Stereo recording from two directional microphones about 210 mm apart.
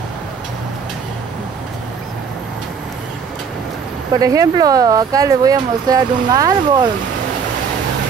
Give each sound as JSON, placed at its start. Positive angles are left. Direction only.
{"t": 4.1, "sound": "speech", "side_deg": -15}